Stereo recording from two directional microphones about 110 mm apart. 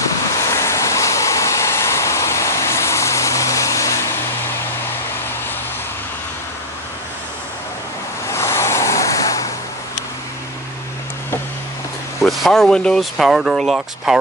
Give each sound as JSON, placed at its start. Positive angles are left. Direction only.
{"t": 0.4, "sound": "vehicle", "side_deg": 25}
{"t": 8.3, "sound": "vehicle", "side_deg": 25}
{"t": 12.2, "sound": "speech", "side_deg": 0}